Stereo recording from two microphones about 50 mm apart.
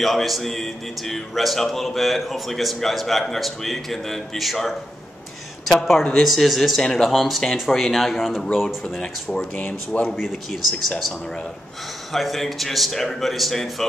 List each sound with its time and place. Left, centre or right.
0.0 s a man's voice: centre
6.1 s a man's voice: centre
6.8 s a man's voice: centre
9.6 s speech: left
10.2 s a man's voice: centre
12.1 s a man's voice: centre